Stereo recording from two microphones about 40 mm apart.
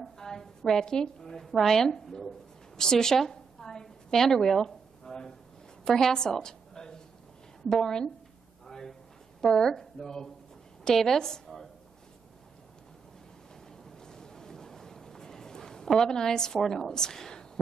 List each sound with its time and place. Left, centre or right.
0.0 s a woman's voice: centre
8.6 s drawer open or close: centre
9.4 s a woman's voice: centre
13.8 s a sound: centre